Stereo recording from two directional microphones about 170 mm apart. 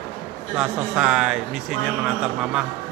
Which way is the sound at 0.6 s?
5° right (ahead or behind).